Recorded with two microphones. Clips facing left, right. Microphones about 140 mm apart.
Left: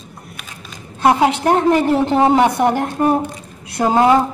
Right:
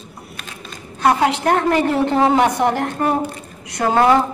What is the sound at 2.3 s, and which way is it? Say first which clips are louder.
A woman's voice: left 2 dB; 10° left (ahead or behind).